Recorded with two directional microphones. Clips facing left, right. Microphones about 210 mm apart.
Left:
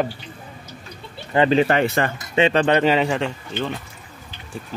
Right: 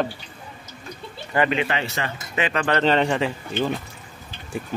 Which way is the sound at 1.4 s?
30° left (ahead or behind).